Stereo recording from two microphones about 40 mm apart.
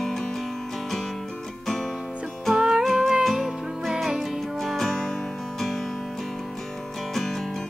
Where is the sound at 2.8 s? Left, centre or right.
Centre.